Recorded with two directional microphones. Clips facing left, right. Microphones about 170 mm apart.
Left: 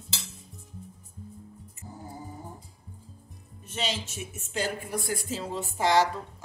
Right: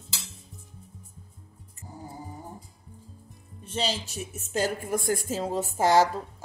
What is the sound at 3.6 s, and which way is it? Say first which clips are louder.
A woman's voice: right 3 dB; 35° right (ahead or behind).